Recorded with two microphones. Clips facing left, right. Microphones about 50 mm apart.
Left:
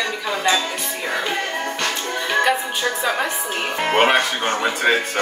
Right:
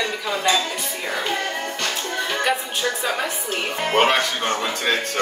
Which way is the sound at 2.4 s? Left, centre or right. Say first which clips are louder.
Left 2 dB; centre.